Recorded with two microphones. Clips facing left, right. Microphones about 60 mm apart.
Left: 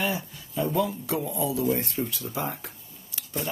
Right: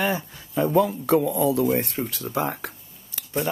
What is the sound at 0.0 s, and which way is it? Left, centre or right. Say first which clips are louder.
Speech: right 4 dB; right.